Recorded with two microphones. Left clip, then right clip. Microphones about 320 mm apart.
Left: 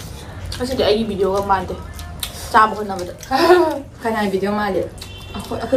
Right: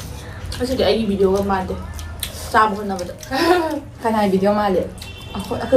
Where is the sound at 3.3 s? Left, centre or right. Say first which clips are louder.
Left 4 dB; centre.